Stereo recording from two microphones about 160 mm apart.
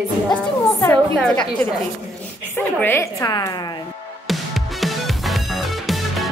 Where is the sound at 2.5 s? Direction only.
15° left (ahead or behind).